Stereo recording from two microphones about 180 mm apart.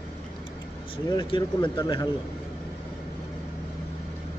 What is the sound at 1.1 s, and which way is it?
Speech, 25° left (ahead or behind).